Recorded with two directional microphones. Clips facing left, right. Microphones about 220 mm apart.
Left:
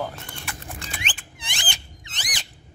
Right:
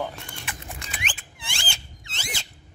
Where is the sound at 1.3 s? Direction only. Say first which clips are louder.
Left 1 dB; 20° left (ahead or behind).